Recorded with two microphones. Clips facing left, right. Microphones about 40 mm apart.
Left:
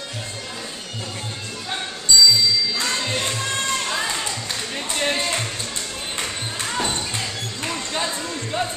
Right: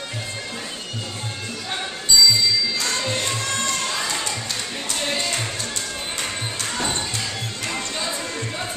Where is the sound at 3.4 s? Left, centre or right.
Centre.